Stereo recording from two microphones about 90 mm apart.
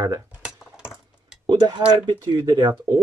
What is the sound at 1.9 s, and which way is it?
Speech, 55° right (ahead or behind).